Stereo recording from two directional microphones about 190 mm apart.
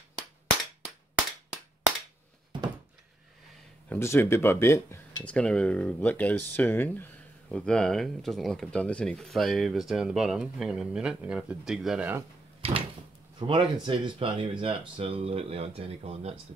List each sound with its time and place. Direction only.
3.9 s speech: 10° left (ahead or behind); by 12.3 s 10° right (ahead or behind)
13.4 s speech: 25° right (ahead or behind)